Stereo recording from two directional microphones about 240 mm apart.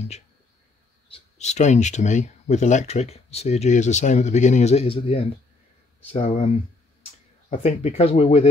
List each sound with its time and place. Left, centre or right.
1.1 s speech: left